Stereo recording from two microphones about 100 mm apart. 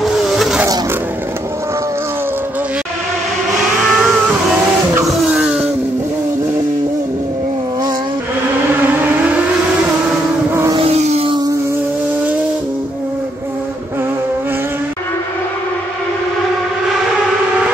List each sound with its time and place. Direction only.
0.0 s vehicle: centre (ahead or behind)
3.9 s music: 10° right (ahead or behind)
5.0 s vehicle: 5° right (ahead or behind)
8.8 s civil defense siren: 20° right (ahead or behind)
10.8 s vehicle: 90° right